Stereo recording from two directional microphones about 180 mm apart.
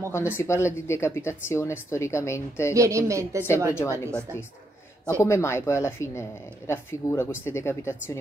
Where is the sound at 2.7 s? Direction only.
15° right (ahead or behind).